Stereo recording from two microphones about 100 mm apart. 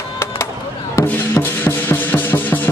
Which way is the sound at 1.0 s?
20° left (ahead or behind).